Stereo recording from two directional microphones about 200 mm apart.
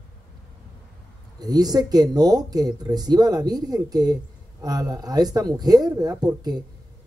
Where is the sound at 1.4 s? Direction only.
20° right (ahead or behind).